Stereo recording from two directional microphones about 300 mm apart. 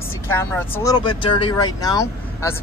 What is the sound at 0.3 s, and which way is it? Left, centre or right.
Speech, centre.